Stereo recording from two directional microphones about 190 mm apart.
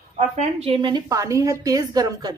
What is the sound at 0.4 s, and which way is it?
A woman's voice, 30° right (ahead or behind).